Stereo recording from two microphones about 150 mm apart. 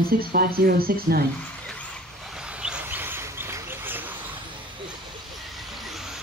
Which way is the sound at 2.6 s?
10° right (ahead or behind).